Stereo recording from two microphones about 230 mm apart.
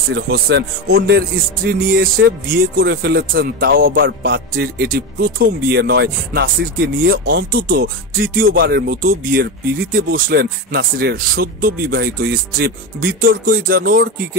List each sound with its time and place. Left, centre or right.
0.1 s speech: right